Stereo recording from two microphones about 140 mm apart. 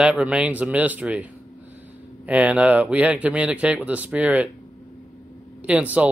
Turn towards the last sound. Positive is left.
turn(degrees=-10)  # may be behind; listen again after turning